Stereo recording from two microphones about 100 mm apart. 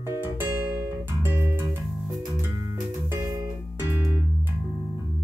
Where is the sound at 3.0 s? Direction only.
30° right (ahead or behind).